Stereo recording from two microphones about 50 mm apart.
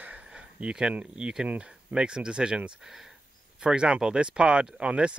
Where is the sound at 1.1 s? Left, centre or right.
Centre.